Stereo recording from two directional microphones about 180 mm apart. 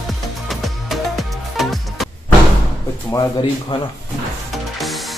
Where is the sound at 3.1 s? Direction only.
20° left (ahead or behind).